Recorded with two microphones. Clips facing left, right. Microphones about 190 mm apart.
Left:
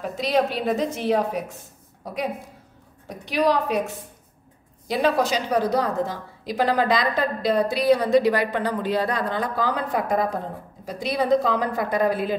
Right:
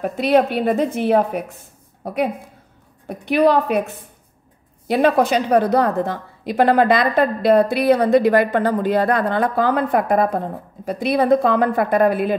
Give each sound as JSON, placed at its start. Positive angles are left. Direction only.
{"t": 0.0, "sound": "a woman's voice", "side_deg": -60}
{"t": 3.1, "sound": "a woman's voice", "side_deg": -55}